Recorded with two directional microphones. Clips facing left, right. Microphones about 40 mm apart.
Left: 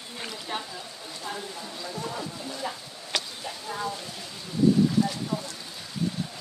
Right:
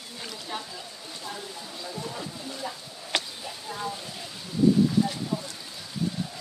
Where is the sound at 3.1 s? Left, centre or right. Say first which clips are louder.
Right 2 dB; right.